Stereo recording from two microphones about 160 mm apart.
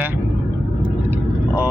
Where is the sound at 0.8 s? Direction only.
10° right (ahead or behind).